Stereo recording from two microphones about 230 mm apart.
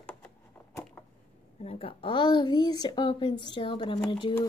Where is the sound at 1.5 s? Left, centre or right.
Left.